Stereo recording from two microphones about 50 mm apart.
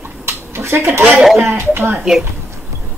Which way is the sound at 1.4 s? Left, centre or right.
Right.